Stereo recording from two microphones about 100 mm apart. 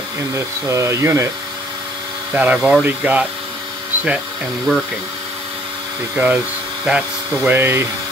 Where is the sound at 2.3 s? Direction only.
15° right (ahead or behind).